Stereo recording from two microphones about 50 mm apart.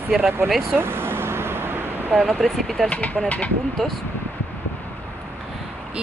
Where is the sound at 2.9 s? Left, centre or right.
Left.